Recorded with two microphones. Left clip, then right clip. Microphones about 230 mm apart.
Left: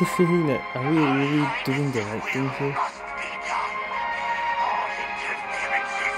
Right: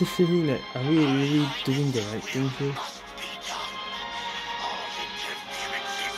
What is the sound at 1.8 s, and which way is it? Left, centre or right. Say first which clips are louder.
Speech: left 2 dB; centre.